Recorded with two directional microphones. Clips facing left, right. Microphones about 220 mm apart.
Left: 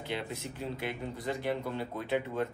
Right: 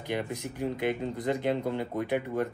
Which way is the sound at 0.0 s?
15° right (ahead or behind).